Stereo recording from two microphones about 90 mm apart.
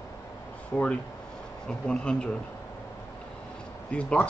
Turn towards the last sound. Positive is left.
turn(degrees=15)  # may be behind; listen again after turning